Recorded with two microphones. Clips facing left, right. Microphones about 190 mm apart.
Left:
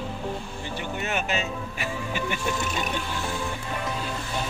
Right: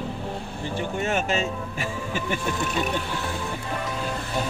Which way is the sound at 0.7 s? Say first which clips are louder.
Right 4 dB; 45° right (ahead or behind).